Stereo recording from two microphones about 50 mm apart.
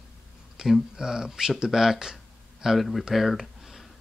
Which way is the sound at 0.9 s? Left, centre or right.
Centre.